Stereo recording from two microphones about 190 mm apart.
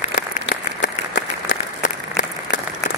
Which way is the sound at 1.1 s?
45° left (ahead or behind).